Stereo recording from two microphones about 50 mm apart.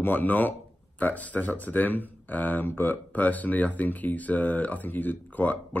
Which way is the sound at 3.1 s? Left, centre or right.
Left.